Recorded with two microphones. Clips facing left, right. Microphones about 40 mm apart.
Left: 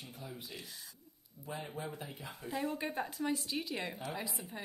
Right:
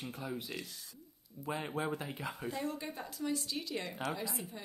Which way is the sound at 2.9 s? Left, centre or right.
Left.